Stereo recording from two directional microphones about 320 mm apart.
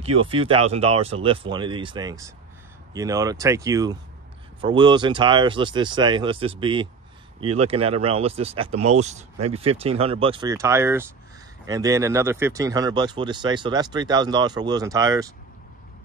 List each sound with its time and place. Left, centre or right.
0.0 s speech: centre